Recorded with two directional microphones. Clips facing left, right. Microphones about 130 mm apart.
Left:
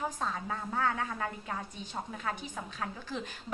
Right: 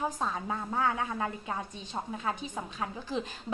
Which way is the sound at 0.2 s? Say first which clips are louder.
Right 2 dB; 20° right (ahead or behind).